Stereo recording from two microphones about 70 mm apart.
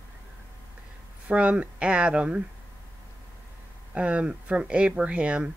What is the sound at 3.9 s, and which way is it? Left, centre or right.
Speech, centre.